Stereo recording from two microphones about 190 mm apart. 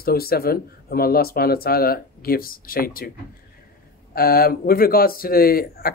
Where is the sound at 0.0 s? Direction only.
55° left (ahead or behind).